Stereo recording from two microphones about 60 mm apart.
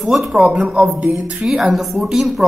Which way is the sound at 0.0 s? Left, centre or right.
Centre.